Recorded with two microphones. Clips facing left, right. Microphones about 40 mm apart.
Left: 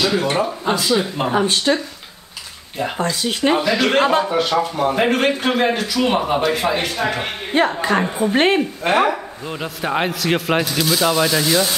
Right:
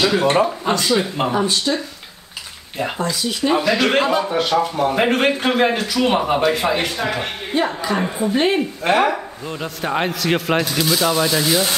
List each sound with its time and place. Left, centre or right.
0.2 s speech: right
0.5 s speech: centre
1.3 s speech: left
3.0 s speech: left
3.6 s speech: centre
4.0 s a man's voice: left
4.3 s speech: centre
4.9 s speech: centre
7.0 s a man's voice: centre
7.5 s a woman's voice: left
8.8 s speech: centre